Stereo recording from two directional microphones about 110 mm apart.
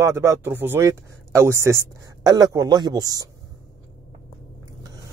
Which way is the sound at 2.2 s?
35° right (ahead or behind).